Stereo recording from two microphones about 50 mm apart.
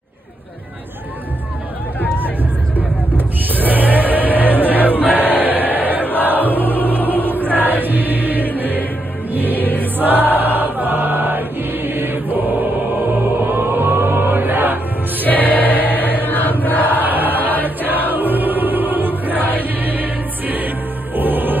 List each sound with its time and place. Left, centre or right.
3.2 s a sound: right
4.6 s crowd: right
6.5 s music: left
7.2 s music: right
9.6 s music: left
9.9 s choir: right
15.2 s choir: left
16.3 s chant: left
17.0 s chant: right
17.6 s music: right